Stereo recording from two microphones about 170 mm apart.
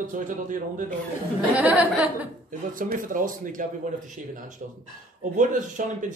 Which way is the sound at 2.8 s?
55° right (ahead or behind).